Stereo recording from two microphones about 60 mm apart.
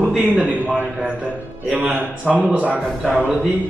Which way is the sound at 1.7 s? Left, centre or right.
Right.